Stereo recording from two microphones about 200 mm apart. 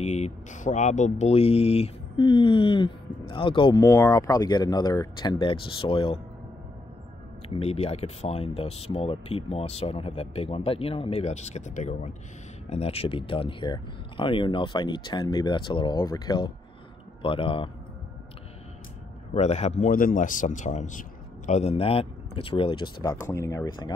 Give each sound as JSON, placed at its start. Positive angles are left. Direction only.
{"t": 0.0, "sound": "speech", "side_deg": 35}
{"t": 7.4, "sound": "speech", "side_deg": 30}
{"t": 19.3, "sound": "speech", "side_deg": 35}
{"t": 23.2, "sound": "speech", "side_deg": 15}